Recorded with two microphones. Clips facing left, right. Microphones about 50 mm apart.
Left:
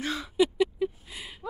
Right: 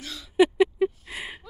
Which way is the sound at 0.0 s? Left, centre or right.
Left.